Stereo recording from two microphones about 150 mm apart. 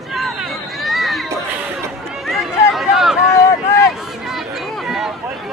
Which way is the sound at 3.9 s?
Centre (ahead or behind).